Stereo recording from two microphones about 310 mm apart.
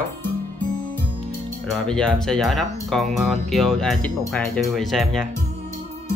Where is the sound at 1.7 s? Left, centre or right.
Centre.